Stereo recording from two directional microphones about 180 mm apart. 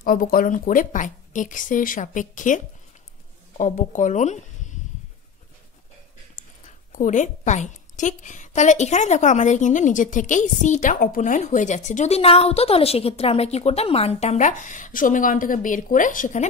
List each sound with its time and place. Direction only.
0.0 s a woman's voice: 50° left (ahead or behind)
6.3 s a woman's voice: 45° left (ahead or behind)